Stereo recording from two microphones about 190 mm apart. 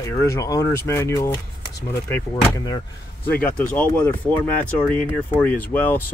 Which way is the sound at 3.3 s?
5° left (ahead or behind).